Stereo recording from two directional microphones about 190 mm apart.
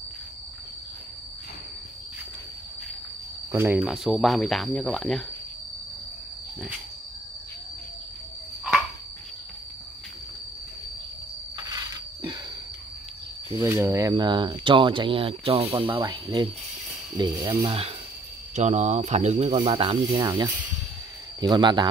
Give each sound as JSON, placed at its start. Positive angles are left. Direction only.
{"t": 3.5, "sound": "speech", "side_deg": -10}
{"t": 11.5, "sound": "a sound", "side_deg": -20}
{"t": 13.5, "sound": "speech", "side_deg": -20}